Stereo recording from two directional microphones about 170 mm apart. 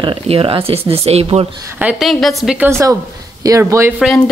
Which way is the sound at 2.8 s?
20° right (ahead or behind).